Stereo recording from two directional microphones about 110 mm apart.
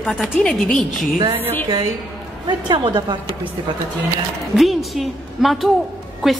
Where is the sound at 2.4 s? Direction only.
50° right (ahead or behind).